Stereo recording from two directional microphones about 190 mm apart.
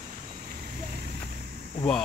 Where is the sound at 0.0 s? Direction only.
45° right (ahead or behind).